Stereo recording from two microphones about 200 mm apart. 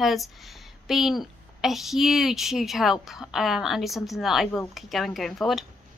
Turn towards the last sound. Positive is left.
turn(degrees=0)  # may be behind; listen again after turning